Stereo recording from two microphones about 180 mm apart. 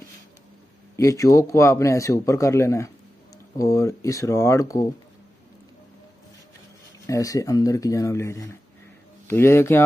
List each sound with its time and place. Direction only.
0.9 s a man's voice: 20° left (ahead or behind)
7.1 s a man's voice: 20° left (ahead or behind)